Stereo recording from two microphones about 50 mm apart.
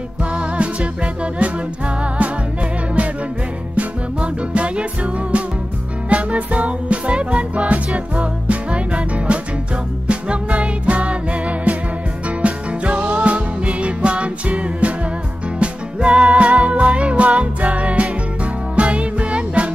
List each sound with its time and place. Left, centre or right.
0.2 s music: right
3.7 s music: right